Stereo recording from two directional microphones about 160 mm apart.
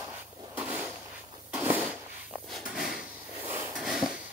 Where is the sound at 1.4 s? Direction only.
10° right (ahead or behind).